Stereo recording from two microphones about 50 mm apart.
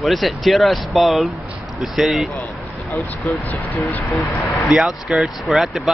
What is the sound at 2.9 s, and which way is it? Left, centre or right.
Speech, left.